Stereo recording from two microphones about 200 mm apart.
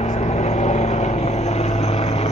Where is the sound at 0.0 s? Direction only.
35° left (ahead or behind).